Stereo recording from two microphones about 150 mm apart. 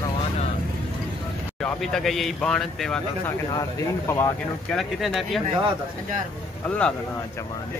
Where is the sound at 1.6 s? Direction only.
5° left (ahead or behind).